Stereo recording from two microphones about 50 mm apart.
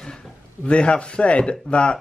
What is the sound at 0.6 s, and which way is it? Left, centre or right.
Speech, left.